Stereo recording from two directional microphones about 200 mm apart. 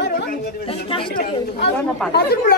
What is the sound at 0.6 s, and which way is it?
Speech, 25° left (ahead or behind).